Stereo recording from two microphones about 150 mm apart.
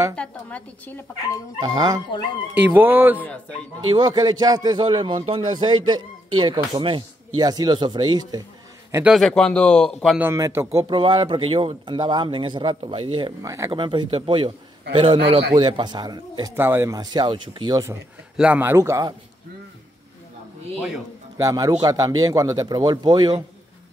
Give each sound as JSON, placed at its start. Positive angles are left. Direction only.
{"t": 0.1, "sound": "speech", "side_deg": 5}
{"t": 1.7, "sound": "a man's voice", "side_deg": -25}
{"t": 2.5, "sound": "speech", "side_deg": -15}
{"t": 3.9, "sound": "a man's voice", "side_deg": -30}
{"t": 9.1, "sound": "speech", "side_deg": 5}
{"t": 10.1, "sound": "speech", "side_deg": -15}
{"t": 16.5, "sound": "a man's voice", "side_deg": -15}
{"t": 18.3, "sound": "speech", "side_deg": -10}
{"t": 21.4, "sound": "a man's voice", "side_deg": -25}